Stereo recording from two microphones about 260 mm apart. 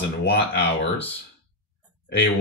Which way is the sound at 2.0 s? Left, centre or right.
Left.